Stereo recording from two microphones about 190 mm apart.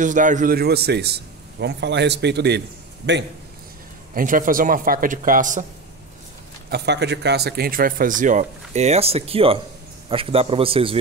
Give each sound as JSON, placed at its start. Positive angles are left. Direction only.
{"t": 0.0, "sound": "a man's voice", "side_deg": -40}
{"t": 4.1, "sound": "speech", "side_deg": -45}
{"t": 6.7, "sound": "a man's voice", "side_deg": -60}